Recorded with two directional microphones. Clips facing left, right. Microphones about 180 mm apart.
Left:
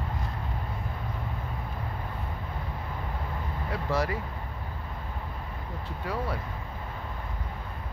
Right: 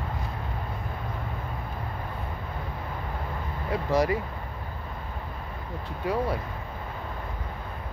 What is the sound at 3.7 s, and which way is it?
Speech, 15° right (ahead or behind).